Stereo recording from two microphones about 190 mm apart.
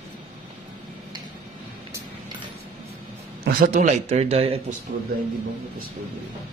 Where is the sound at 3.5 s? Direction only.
45° right (ahead or behind).